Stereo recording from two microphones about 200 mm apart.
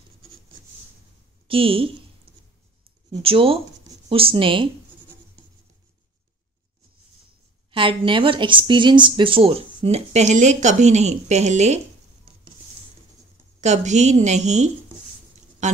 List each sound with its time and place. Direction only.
1.5 s a woman's voice: 25° right (ahead or behind)
3.1 s a woman's voice: 25° right (ahead or behind)
7.7 s a woman's voice: 25° right (ahead or behind)
13.6 s a woman's voice: 35° right (ahead or behind)